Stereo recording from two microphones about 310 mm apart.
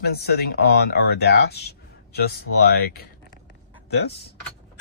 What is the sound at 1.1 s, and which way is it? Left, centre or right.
Speech, left.